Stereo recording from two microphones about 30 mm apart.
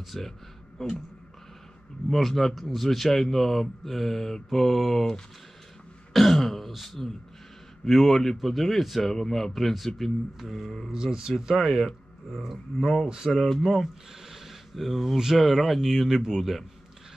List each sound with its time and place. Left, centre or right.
0.2 s speech: centre
2.0 s speech: centre
6.1 s throat clearing: centre
6.7 s speech: centre
7.8 s speech: centre
9.0 s speech: centre
10.9 s speech: right
11.3 s speech: centre
14.3 s a sound: centre
15.3 s speech: centre